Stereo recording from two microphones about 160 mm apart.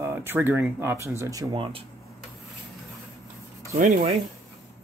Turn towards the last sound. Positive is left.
turn(degrees=-60)  # may be behind; listen again after turning